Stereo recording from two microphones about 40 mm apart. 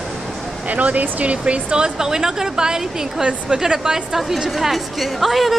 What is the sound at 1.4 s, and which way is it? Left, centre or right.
A woman's voice, right.